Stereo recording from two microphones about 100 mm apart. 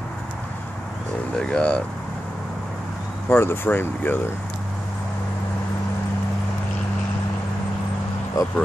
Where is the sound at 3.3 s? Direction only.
25° left (ahead or behind).